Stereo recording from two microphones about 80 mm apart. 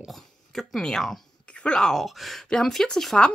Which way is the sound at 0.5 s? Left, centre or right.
Centre.